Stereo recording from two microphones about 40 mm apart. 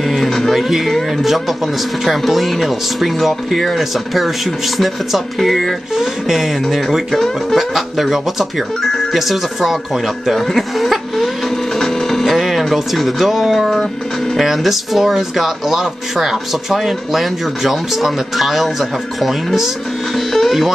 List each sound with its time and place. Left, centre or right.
0.1 s speech: centre
11.8 s hum: centre
12.4 s speech: centre
20.3 s music: centre